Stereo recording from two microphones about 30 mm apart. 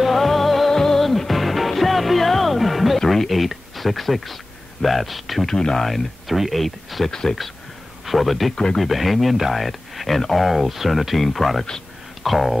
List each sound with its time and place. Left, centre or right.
0.0 s music: centre
1.0 s music: centre
3.0 s music: centre
3.3 s speech: centre
5.5 s speech: centre
5.8 s speech: centre
7.1 s speech: centre
8.0 s speech: centre